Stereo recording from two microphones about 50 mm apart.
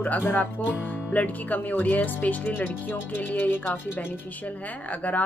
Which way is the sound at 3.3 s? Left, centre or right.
Left.